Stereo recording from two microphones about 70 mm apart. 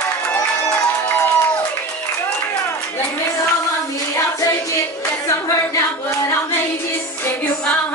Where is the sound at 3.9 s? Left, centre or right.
Left.